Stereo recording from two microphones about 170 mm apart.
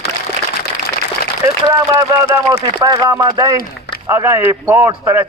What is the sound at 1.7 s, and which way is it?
A man's voice, 20° right (ahead or behind).